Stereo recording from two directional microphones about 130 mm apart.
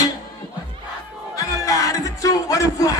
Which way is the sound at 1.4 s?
25° left (ahead or behind).